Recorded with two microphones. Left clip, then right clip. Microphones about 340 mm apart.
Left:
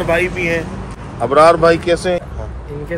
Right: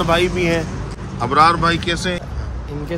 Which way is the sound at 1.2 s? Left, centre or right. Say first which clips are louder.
Left 4 dB; centre.